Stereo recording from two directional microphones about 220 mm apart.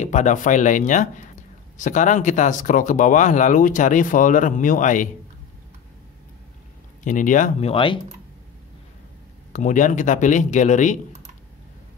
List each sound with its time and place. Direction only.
0.0 s speech: 35° left (ahead or behind)
7.0 s speech: 35° left (ahead or behind)
7.7 s speech: 25° left (ahead or behind)
9.5 s speech: 35° left (ahead or behind)